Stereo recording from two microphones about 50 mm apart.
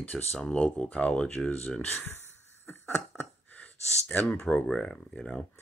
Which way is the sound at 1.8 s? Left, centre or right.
Left.